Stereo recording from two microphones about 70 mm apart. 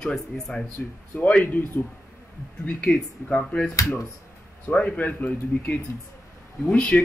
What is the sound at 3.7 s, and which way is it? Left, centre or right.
Speech, left.